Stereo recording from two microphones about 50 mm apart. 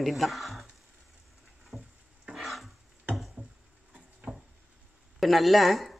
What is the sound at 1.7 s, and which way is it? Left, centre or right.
Frying, centre.